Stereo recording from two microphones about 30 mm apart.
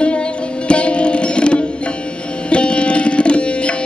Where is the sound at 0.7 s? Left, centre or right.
Left.